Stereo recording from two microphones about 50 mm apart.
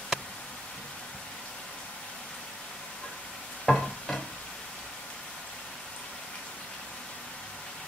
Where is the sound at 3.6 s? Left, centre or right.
Centre.